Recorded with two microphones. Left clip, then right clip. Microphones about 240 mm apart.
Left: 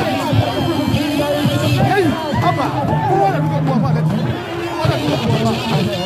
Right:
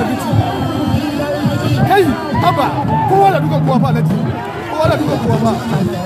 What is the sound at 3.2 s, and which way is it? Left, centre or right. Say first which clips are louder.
Speech: right 5 dB; right.